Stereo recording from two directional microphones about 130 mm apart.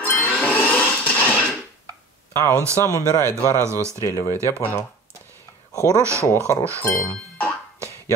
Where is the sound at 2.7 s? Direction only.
20° left (ahead or behind).